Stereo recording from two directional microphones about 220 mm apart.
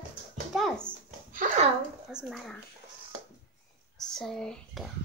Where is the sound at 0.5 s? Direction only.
Centre (ahead or behind).